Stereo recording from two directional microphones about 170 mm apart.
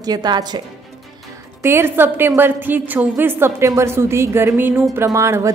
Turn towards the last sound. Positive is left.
turn(degrees=-15)  # may be behind; listen again after turning